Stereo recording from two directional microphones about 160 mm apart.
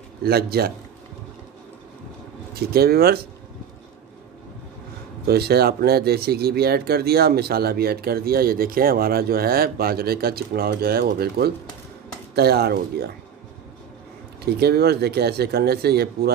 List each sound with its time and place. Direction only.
0.2 s speech: 75° right (ahead or behind)
2.5 s speech: 75° right (ahead or behind)
5.2 s speech: 80° right
12.4 s speech: 85° right
14.4 s speech: 90° right